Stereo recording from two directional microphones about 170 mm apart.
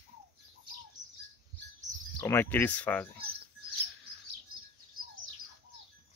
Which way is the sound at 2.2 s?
10° left (ahead or behind).